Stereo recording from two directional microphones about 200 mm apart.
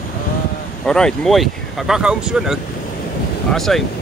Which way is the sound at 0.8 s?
5° left (ahead or behind).